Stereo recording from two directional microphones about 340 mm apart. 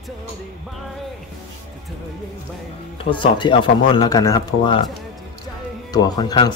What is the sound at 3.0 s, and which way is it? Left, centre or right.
Speech, centre.